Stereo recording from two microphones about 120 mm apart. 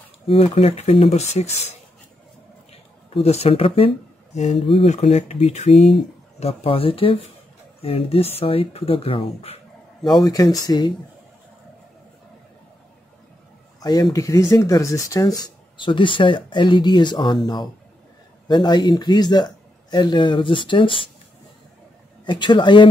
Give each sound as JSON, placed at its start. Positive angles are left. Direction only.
{"t": 0.3, "sound": "speech", "side_deg": 55}
{"t": 5.0, "sound": "speech", "side_deg": 60}
{"t": 6.4, "sound": "speech", "side_deg": 55}
{"t": 10.0, "sound": "a man's voice", "side_deg": 35}
{"t": 13.7, "sound": "speech", "side_deg": 35}
{"t": 15.8, "sound": "a man's voice", "side_deg": 45}
{"t": 18.5, "sound": "a man's voice", "side_deg": 35}
{"t": 22.2, "sound": "a man's voice", "side_deg": 40}